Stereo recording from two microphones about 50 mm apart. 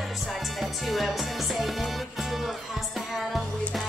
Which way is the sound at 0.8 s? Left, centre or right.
Centre.